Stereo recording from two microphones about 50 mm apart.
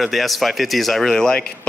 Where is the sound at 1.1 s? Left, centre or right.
Centre.